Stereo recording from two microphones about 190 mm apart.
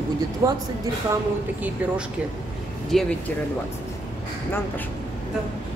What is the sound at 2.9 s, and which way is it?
Speech, centre (ahead or behind).